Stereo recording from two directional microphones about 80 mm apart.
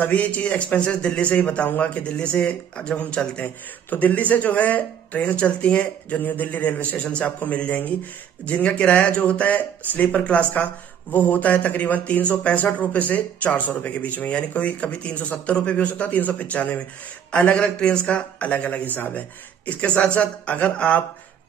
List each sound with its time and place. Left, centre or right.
0.0 s speech: centre